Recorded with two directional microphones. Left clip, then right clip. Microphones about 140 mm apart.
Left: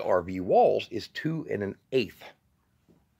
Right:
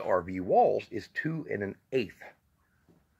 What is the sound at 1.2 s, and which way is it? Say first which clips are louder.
Speech: left 4 dB; 15° left (ahead or behind).